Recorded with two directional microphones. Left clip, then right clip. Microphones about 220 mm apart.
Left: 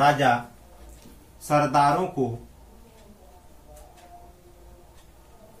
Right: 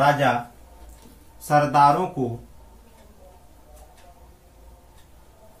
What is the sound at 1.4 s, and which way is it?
Speech, 10° right (ahead or behind).